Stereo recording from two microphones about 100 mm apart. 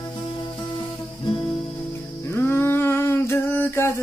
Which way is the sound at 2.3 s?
20° left (ahead or behind).